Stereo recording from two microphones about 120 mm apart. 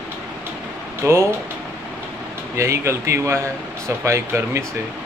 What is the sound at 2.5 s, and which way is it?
Speech, 25° right (ahead or behind).